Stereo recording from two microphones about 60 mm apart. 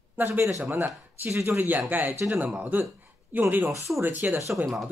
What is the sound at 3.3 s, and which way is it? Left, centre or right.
Speech, right.